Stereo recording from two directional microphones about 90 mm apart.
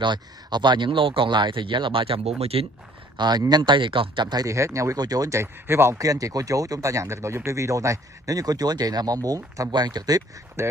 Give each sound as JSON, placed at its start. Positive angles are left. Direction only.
{"t": 0.0, "sound": "speech", "side_deg": -55}
{"t": 3.2, "sound": "speech", "side_deg": -50}
{"t": 4.5, "sound": "speech", "side_deg": -35}
{"t": 10.6, "sound": "speech", "side_deg": -30}